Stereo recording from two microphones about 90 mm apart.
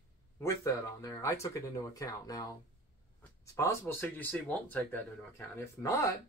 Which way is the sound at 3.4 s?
30° left (ahead or behind).